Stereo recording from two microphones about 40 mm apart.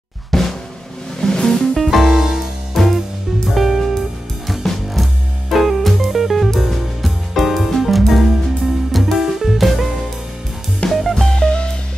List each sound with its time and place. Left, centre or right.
0.3 s drum: centre
1.2 s music: centre
1.8 s music: centre
2.8 s music: centre
11.2 s music: centre